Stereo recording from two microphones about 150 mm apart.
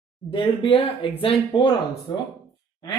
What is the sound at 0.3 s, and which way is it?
Speech, 35° left (ahead or behind).